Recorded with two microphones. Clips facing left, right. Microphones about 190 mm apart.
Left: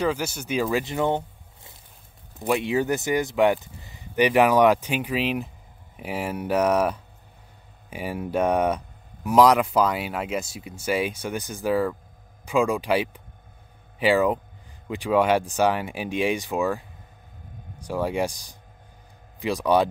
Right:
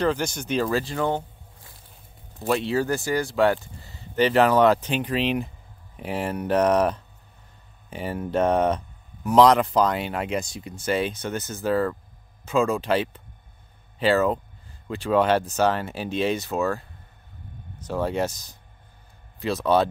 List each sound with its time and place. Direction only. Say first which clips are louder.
0.0 s speech: right 1 dB; 5° left (ahead or behind)